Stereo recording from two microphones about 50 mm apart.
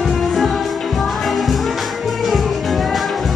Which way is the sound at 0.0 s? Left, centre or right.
Centre.